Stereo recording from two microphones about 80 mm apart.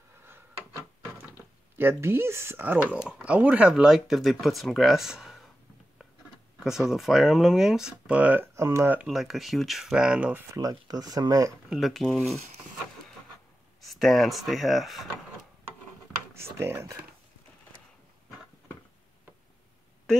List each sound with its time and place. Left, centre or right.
1.8 s speech: right
2.6 s speech: right
3.7 s speech: centre
6.6 s speech: centre
8.5 s speech: right
9.0 s speech: centre
10.5 s speech: right
11.7 s speech: centre
13.7 s speech: centre
16.3 s speech: right